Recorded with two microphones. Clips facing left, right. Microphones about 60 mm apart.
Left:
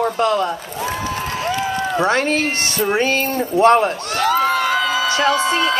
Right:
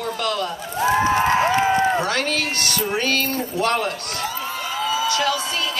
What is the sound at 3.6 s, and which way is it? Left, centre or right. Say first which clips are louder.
Speech: left 10 dB; left.